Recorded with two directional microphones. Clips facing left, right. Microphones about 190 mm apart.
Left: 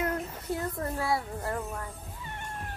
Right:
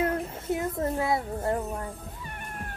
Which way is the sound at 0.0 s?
20° right (ahead or behind).